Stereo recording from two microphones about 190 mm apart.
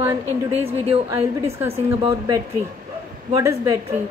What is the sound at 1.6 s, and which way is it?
Speech, 15° right (ahead or behind).